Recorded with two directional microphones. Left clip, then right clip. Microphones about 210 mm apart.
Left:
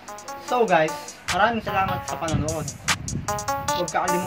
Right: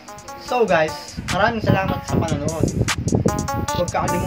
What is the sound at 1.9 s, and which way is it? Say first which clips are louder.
Speech: right 3 dB; centre (ahead or behind).